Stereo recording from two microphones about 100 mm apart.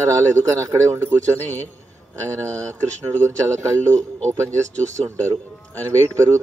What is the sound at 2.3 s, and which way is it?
Speech, 30° right (ahead or behind).